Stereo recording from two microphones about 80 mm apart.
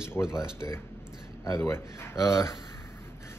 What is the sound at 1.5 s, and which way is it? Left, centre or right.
Speech, left.